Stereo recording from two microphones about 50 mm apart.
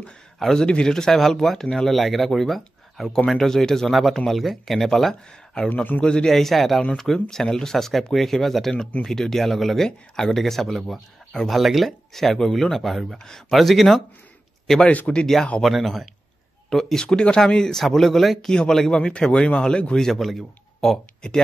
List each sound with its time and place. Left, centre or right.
0.4 s a man's voice: centre
6.0 s speech: centre
6.3 s speech: centre
14.9 s speech: left
15.6 s speech: centre
16.7 s speech: centre
20.1 s speech: centre